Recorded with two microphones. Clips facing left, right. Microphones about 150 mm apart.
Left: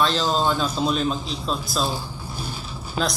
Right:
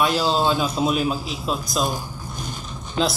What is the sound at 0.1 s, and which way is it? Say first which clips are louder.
Speech: right 2 dB; 10° right (ahead or behind).